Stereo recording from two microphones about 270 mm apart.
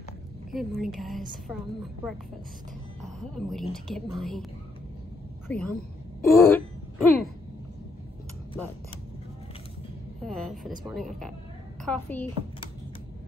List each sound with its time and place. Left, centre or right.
0.5 s speech: centre
5.5 s speech: centre
6.2 s throat clearing: centre
10.2 s a sound: centre
11.0 s speech: centre